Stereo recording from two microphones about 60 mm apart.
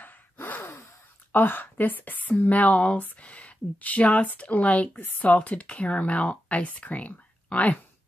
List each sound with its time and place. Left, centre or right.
0.0 s gasp: left
1.3 s speech: left